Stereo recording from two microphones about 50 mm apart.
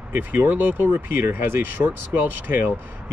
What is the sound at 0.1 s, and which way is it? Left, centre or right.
Speech, right.